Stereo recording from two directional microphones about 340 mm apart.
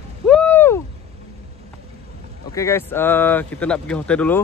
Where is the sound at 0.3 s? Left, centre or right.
Centre.